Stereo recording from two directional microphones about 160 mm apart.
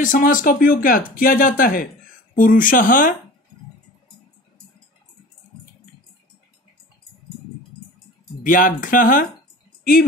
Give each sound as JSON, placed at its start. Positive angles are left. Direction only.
{"t": 0.0, "sound": "speech", "side_deg": 55}
{"t": 8.5, "sound": "speech", "side_deg": 60}